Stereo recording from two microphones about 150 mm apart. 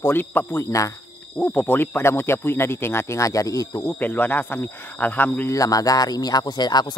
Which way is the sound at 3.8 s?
10° left (ahead or behind).